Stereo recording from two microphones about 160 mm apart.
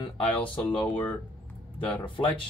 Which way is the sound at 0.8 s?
10° left (ahead or behind).